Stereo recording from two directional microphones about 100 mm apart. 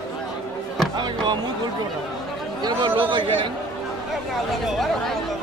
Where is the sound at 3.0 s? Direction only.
55° right (ahead or behind).